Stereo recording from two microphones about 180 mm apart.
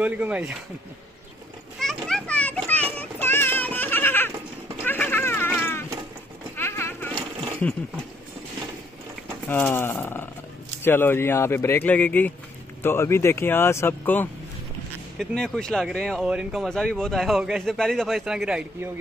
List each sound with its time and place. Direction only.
0.0 s speech: 10° right (ahead or behind)
1.8 s music: 5° left (ahead or behind)
4.8 s a sound: 10° left (ahead or behind)
6.5 s sheep: 10° left (ahead or behind)
9.5 s speech: 10° left (ahead or behind); by 18.9 s 5° right (ahead or behind)